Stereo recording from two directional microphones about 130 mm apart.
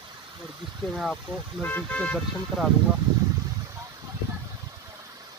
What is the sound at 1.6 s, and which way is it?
Speech, 15° left (ahead or behind).